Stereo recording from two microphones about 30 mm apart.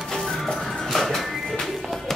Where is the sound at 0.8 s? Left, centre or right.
Centre.